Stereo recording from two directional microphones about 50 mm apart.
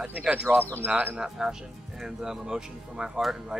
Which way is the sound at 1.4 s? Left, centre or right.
Centre.